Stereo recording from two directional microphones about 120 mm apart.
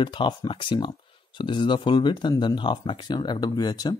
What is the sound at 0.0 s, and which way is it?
Speech, 40° left (ahead or behind).